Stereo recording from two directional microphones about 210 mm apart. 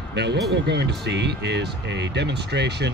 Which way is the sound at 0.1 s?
55° right (ahead or behind).